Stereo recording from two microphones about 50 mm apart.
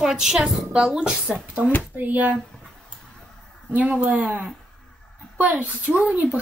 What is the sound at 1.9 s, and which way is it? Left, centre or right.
Speech, right.